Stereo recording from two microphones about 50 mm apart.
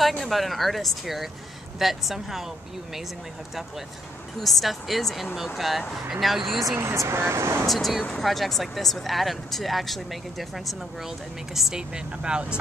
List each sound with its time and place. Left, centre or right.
0.3 s speech: centre
4.4 s speech: centre
6.8 s speech: right
7.6 s speech: centre
11.9 s speech: centre